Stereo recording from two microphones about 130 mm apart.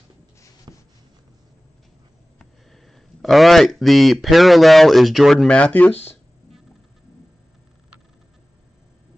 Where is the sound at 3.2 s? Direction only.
Centre (ahead or behind).